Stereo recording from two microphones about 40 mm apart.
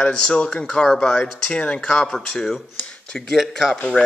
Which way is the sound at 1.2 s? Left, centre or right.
Left.